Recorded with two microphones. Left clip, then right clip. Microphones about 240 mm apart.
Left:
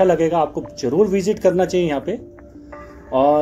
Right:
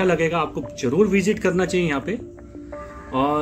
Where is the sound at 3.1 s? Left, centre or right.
Right.